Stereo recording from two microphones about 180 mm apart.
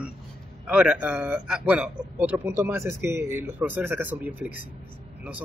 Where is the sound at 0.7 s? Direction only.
5° right (ahead or behind).